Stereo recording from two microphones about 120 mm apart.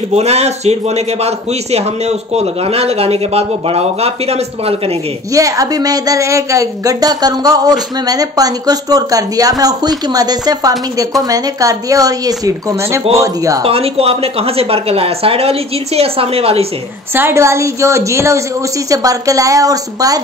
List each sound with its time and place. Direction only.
0.1 s a man's voice: 65° right (ahead or behind)
5.3 s a woman's voice: 30° right (ahead or behind)
13.7 s a man's voice: 55° right (ahead or behind)
17.1 s speech: 20° right (ahead or behind)